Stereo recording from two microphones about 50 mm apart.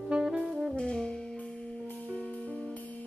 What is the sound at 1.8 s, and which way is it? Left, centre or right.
Music, left.